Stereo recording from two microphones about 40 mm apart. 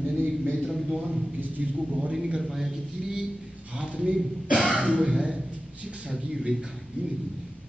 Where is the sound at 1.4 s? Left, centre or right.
Right.